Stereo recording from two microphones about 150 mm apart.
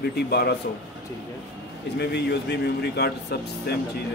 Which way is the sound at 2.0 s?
90° left.